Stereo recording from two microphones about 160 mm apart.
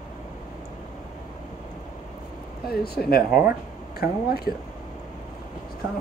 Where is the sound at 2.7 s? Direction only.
75° left (ahead or behind).